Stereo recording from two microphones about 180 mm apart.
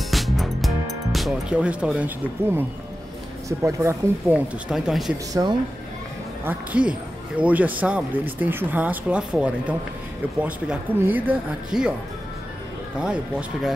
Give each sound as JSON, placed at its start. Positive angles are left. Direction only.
{"t": 0.1, "sound": "music", "side_deg": 0}
{"t": 3.4, "sound": "a man's voice", "side_deg": -15}
{"t": 4.6, "sound": "speech", "side_deg": -5}
{"t": 5.4, "sound": "speech", "side_deg": -20}
{"t": 6.4, "sound": "a man's voice", "side_deg": -10}
{"t": 12.9, "sound": "speech", "side_deg": -5}